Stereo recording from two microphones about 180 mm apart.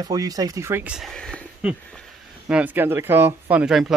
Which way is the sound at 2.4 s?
5° right (ahead or behind).